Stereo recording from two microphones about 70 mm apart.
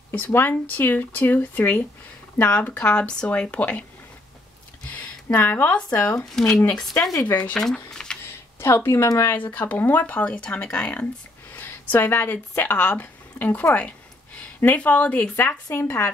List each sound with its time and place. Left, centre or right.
0.1 s speech: left
4.8 s a sound: left
5.9 s speech: centre
6.9 s speech: left
7.2 s speech: left
7.5 s speech: centre
8.5 s speech: left
9.3 s speech: left
11.5 s speech: left
15.7 s speech: left